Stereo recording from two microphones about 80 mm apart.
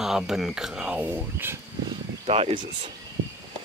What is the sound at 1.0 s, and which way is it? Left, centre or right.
Speech, right.